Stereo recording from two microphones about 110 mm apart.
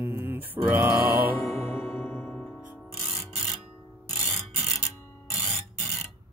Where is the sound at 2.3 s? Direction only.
5° left (ahead or behind).